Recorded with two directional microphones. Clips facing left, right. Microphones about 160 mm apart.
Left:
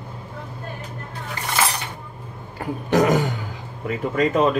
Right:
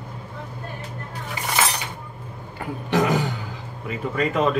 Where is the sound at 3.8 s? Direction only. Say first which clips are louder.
Left 3 dB; 40° left (ahead or behind).